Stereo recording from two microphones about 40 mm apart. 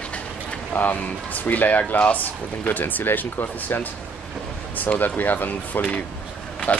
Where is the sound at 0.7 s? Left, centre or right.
Left.